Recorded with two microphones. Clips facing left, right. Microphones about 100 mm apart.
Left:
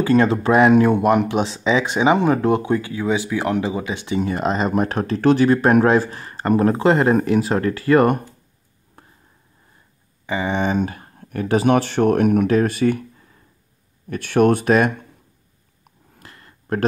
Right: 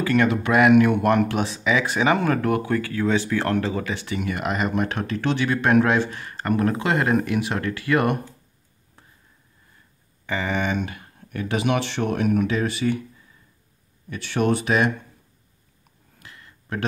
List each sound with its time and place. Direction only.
0.0 s speech: 30° left (ahead or behind)
1.0 s speech: 20° left (ahead or behind)
4.2 s speech: 30° left (ahead or behind)
10.2 s speech: 20° left (ahead or behind); by 13.0 s 50° left (ahead or behind)
14.0 s speech: 50° left (ahead or behind)
16.2 s a sound: 45° left (ahead or behind)